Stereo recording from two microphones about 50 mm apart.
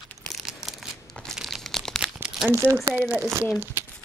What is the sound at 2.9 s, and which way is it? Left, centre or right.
Speech, right.